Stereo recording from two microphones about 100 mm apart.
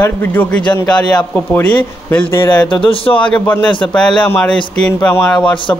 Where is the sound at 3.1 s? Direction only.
15° left (ahead or behind).